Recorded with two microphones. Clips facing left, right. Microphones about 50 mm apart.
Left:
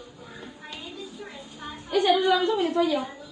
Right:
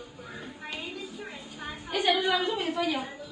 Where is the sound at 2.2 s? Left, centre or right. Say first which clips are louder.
Left 5 dB; right.